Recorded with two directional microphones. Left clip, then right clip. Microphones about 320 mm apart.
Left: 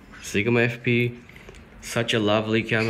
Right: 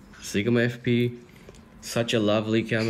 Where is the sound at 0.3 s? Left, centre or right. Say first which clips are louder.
Left 3 dB; centre.